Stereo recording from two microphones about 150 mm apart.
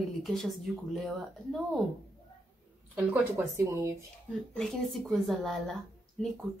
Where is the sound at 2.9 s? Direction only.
10° right (ahead or behind).